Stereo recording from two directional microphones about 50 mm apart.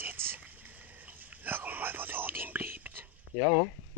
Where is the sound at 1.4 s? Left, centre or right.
Right.